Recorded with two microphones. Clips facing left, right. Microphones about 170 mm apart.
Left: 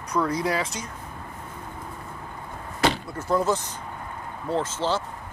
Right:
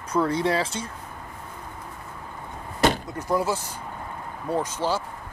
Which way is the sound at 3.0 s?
15° right (ahead or behind).